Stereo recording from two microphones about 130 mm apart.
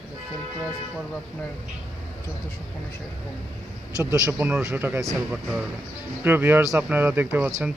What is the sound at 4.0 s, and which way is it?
Speech, 20° right (ahead or behind).